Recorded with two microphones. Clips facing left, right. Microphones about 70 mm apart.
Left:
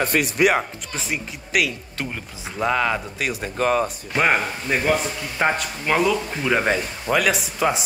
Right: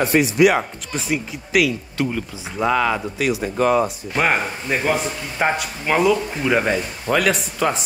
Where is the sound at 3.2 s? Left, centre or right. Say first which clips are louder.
Right 5 dB; left.